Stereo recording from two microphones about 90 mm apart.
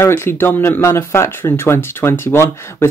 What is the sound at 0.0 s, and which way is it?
Speech, 25° left (ahead or behind).